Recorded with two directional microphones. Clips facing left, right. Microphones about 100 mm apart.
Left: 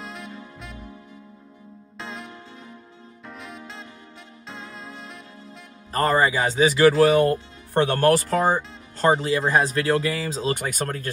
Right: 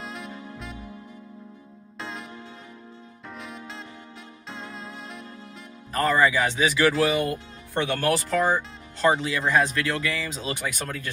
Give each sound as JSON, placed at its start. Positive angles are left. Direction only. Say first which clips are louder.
{"t": 0.0, "sound": "music", "louder": "even", "side_deg": 0}
{"t": 2.0, "sound": "music", "louder": "even", "side_deg": 0}
{"t": 3.3, "sound": "music", "louder": "even", "side_deg": 0}
{"t": 5.9, "sound": "speech", "louder": "left 1 dB", "side_deg": 40}